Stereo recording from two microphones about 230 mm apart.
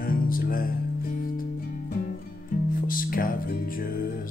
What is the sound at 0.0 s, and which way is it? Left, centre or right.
Music, left.